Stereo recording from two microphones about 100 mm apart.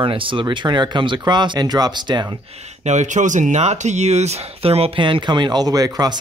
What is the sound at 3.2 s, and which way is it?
Speech, 90° right.